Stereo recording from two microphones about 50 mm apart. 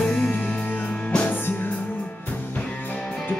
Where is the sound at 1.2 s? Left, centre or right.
Left.